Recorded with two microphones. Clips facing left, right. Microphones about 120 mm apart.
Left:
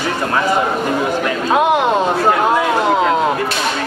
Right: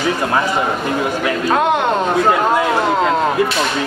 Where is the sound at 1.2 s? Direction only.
5° left (ahead or behind).